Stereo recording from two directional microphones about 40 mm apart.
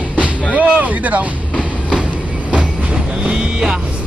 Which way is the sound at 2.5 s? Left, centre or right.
Right.